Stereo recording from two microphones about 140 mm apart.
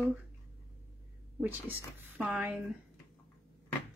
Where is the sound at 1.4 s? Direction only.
15° right (ahead or behind).